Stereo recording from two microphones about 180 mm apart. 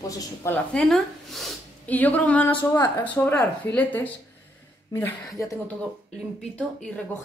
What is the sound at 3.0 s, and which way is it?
Speech, 10° left (ahead or behind).